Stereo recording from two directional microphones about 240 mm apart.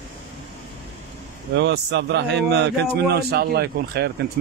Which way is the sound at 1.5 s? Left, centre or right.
Right.